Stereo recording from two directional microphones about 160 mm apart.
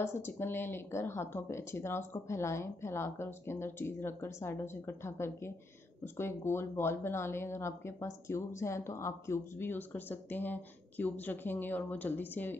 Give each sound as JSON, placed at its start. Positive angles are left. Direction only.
{"t": 0.0, "sound": "speech", "side_deg": 15}